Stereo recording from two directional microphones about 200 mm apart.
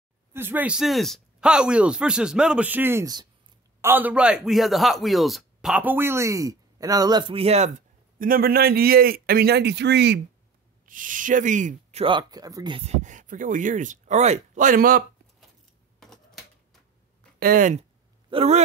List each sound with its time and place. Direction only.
0.3 s speech: 10° right (ahead or behind); by 10.2 s 55° right (ahead or behind)
10.9 s speech: 40° right (ahead or behind)
16.0 s typewriter: centre (ahead or behind)
17.4 s speech: 45° right (ahead or behind)